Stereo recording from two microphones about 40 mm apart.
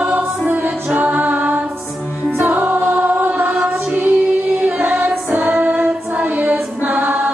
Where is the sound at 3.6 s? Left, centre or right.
Right.